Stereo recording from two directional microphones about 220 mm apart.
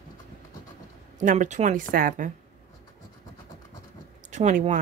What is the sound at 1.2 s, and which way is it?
Speech, 35° right (ahead or behind).